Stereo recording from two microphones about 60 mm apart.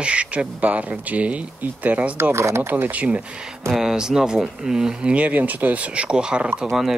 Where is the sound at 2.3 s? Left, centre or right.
Right.